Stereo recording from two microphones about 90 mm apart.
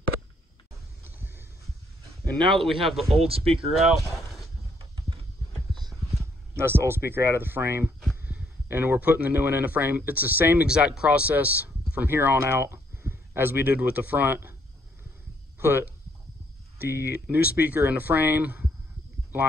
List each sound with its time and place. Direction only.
2.3 s a man's voice: 5° left (ahead or behind)
3.3 s speech: 90° right
3.8 s speech: centre (ahead or behind)
5.8 s clip-clop: centre (ahead or behind)
6.5 s speech: 30° right (ahead or behind)
15.6 s speech: 25° right (ahead or behind)